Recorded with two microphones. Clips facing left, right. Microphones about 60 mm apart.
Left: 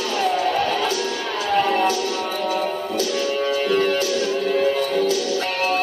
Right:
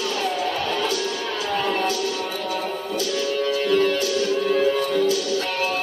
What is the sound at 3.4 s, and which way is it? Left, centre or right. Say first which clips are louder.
Music: right 1 dB; left.